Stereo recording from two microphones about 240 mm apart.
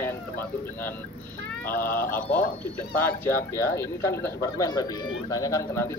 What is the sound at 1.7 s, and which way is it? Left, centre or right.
Speech, left.